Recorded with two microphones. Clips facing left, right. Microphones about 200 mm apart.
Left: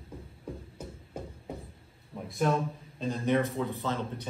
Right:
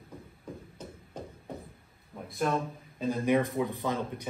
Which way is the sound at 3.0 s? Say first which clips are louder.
Right 1 dB; 10° right (ahead or behind).